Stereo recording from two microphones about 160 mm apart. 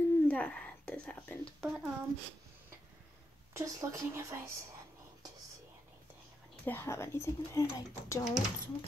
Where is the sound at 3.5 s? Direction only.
20° right (ahead or behind).